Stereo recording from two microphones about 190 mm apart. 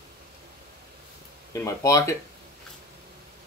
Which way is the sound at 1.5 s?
15° left (ahead or behind).